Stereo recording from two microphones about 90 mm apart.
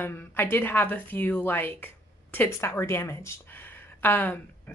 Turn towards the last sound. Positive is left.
turn(degrees=20)  # may be behind; listen again after turning